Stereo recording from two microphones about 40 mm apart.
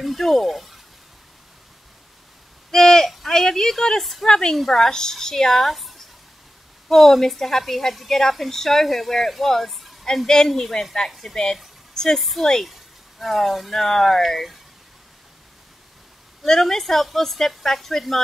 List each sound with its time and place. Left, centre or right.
0.0 s speech: centre
2.7 s a sound: centre
3.3 s a woman's voice: centre
4.0 s a woman's voice: centre
4.3 s a woman's voice: centre
10.0 s a woman's voice: centre
11.9 s a woman's voice: centre
12.2 s a woman's voice: centre
16.4 s a woman's voice: centre